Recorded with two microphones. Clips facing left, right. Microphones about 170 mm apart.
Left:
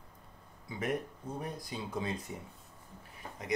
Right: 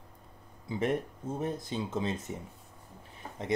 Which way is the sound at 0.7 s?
25° right (ahead or behind).